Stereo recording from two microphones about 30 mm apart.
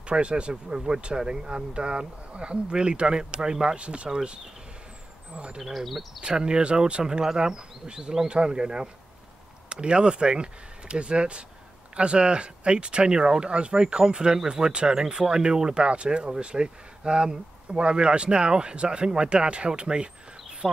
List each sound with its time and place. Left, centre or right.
0.0 s speech: right
3.7 s speech: right
5.6 s speech: centre
6.2 s speech: right
20.6 s speech: centre